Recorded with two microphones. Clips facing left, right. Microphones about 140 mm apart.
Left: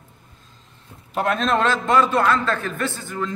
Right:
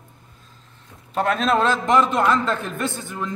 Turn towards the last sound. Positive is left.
turn(degrees=-15)  # may be behind; listen again after turning